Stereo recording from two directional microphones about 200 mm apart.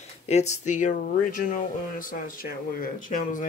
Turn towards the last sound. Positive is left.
turn(degrees=40)  # may be behind; listen again after turning